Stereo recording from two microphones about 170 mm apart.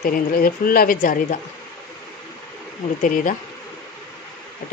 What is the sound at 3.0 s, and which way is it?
Speech, 50° left (ahead or behind).